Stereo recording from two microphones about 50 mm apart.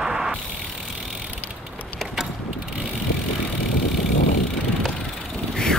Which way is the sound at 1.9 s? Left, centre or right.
Centre.